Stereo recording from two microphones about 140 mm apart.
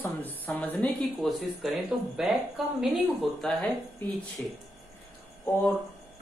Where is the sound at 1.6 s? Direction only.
Centre (ahead or behind).